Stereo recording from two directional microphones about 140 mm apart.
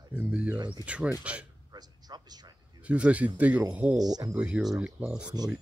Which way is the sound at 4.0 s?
25° right (ahead or behind).